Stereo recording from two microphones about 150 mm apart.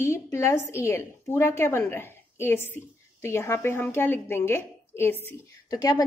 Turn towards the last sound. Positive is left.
turn(degrees=25)  # may be behind; listen again after turning